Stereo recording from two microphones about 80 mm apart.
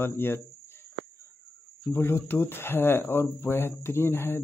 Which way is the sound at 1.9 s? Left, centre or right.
Left.